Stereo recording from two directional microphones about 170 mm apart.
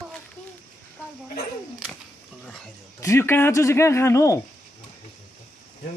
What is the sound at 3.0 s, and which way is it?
Speech, 15° left (ahead or behind).